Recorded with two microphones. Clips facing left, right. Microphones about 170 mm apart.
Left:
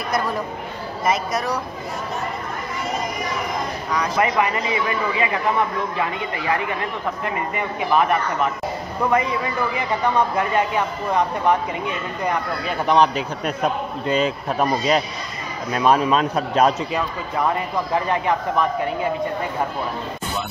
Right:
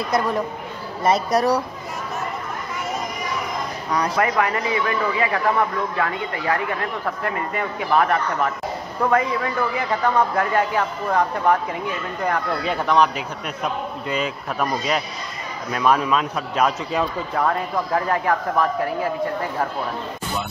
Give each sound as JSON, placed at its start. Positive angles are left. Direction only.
{"t": 1.0, "sound": "a woman's voice", "side_deg": -35}
{"t": 3.9, "sound": "a woman's voice", "side_deg": -35}
{"t": 4.2, "sound": "a man's voice", "side_deg": 15}
{"t": 12.8, "sound": "speech", "side_deg": 25}
{"t": 17.4, "sound": "a man's voice", "side_deg": 5}